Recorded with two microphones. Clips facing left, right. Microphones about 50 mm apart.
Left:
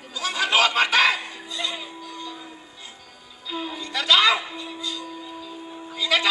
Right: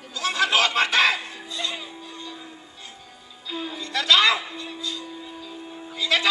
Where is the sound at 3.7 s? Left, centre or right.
Centre.